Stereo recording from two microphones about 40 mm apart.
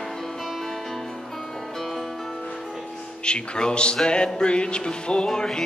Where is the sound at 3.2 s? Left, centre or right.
Left.